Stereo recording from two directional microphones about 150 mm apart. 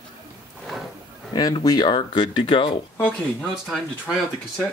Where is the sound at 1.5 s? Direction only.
30° left (ahead or behind).